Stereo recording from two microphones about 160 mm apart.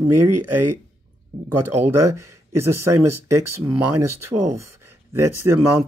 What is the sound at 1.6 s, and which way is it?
Speech, 15° right (ahead or behind).